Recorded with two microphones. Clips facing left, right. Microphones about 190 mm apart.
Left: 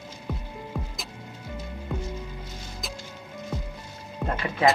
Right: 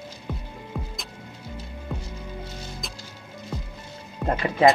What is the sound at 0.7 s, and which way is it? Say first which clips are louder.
Music: right 3 dB; centre (ahead or behind).